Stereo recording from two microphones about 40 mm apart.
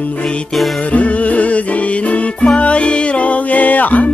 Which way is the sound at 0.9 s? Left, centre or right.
Left.